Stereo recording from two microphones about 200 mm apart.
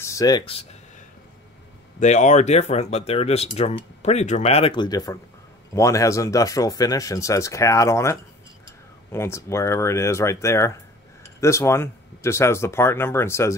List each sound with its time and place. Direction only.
0.0 s speech: 15° left (ahead or behind)
2.0 s speech: 35° left (ahead or behind); by 13.6 s 15° left (ahead or behind)